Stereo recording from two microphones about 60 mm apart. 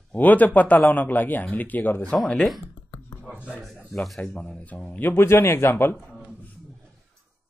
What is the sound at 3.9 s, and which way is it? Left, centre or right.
Speech, centre.